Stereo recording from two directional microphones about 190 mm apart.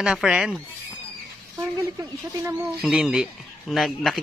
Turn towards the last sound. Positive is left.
turn(degrees=0)  # may be behind; listen again after turning